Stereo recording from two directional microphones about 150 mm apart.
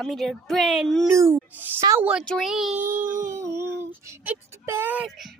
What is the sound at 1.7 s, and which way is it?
Speech, 20° right (ahead or behind).